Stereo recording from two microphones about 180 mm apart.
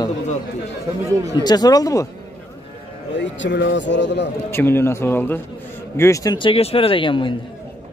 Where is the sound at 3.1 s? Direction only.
85° left.